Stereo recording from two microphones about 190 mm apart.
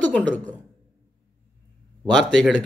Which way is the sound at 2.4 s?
5° left (ahead or behind).